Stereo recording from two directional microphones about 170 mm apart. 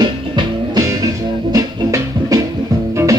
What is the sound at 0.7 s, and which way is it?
Music, 20° right (ahead or behind).